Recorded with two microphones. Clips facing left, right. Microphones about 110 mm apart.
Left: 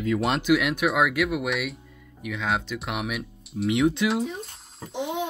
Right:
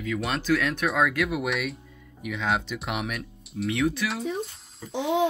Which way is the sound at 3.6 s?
20° left (ahead or behind).